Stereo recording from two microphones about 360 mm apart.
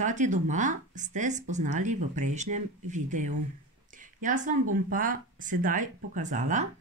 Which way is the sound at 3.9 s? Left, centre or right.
Right.